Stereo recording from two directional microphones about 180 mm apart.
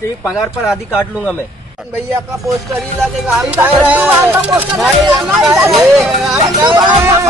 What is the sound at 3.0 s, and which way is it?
Speech, 5° right (ahead or behind).